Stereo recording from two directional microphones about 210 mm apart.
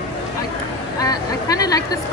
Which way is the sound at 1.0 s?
15° left (ahead or behind).